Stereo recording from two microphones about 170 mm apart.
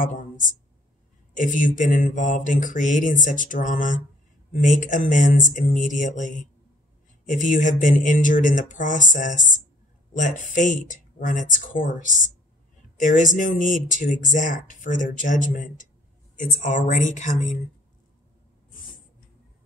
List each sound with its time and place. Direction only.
0.0 s speech: 50° left (ahead or behind)
1.3 s speech: 50° left (ahead or behind)